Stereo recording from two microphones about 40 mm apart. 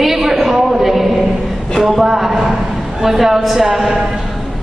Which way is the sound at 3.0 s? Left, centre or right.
Centre.